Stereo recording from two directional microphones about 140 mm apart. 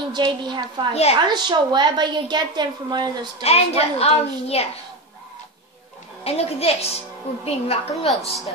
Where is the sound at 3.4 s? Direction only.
45° left (ahead or behind).